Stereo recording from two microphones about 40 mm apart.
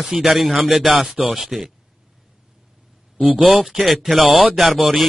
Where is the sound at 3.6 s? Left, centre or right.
Centre.